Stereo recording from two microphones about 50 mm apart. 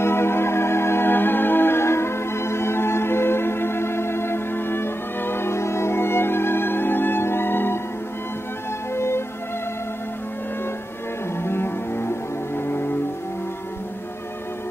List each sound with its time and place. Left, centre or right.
0.0 s music: left
8.9 s music: left
11.4 s music: left